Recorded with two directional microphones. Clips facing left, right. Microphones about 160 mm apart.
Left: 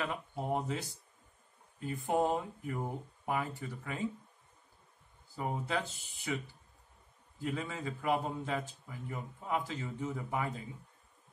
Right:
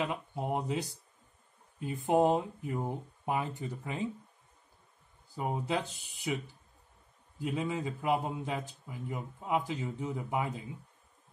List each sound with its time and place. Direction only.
0.0 s a man's voice: 15° right (ahead or behind)
5.3 s a man's voice: 15° right (ahead or behind)